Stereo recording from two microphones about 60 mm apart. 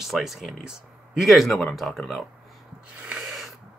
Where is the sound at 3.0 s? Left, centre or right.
Centre.